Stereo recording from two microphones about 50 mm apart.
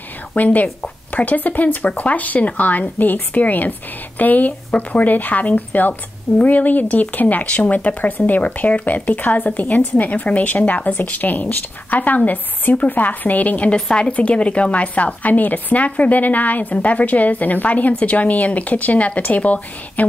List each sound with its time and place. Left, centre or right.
0.4 s a woman's voice: left